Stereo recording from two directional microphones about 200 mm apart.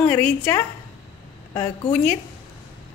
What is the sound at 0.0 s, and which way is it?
Speech, 10° left (ahead or behind).